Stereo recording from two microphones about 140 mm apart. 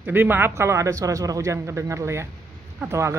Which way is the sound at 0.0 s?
15° right (ahead or behind).